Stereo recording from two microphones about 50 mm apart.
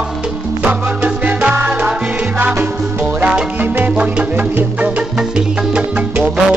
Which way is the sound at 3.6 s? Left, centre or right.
Right.